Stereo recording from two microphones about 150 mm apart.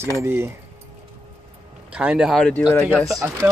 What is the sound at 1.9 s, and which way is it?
Speech, 5° right (ahead or behind).